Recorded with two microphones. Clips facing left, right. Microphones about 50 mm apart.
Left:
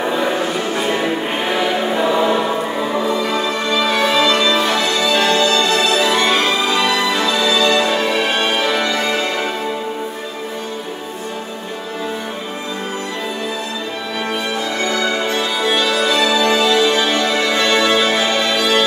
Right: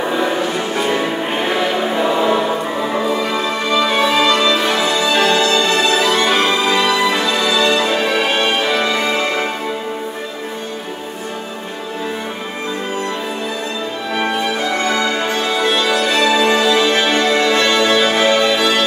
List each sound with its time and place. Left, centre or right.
0.0 s music: centre
8.6 s music: centre
8.9 s music: centre
14.9 s music: right